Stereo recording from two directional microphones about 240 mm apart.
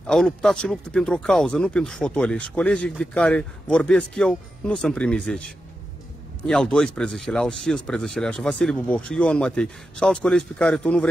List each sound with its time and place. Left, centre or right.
0.0 s speech: centre
6.4 s speech: centre